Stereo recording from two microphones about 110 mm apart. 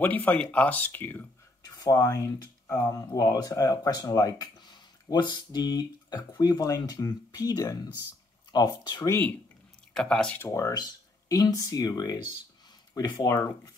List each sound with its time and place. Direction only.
0.0 s speech: 15° left (ahead or behind)
1.6 s speech: 30° left (ahead or behind)
9.0 s speech: 20° left (ahead or behind)
9.9 s speech: 5° left (ahead or behind)
10.4 s speech: 30° left (ahead or behind)